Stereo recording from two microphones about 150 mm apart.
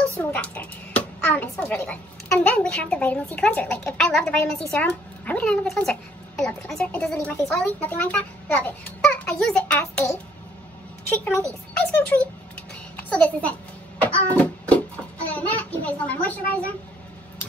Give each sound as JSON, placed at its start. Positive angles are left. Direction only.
{"t": 0.2, "sound": "a child's voice", "side_deg": 10}
{"t": 11.1, "sound": "a child's voice", "side_deg": 15}
{"t": 14.0, "sound": "a sound", "side_deg": 10}
{"t": 15.2, "sound": "a child's voice", "side_deg": 10}